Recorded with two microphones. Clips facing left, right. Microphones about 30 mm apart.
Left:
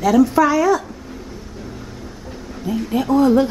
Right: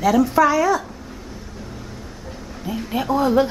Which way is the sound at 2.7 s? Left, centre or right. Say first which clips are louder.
Left 4 dB; centre.